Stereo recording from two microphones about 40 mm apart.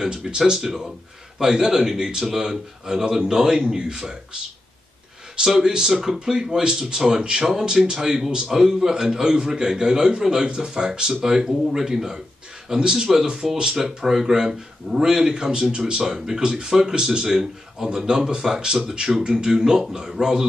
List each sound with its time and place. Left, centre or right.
0.0 s speech: centre
5.6 s speech: centre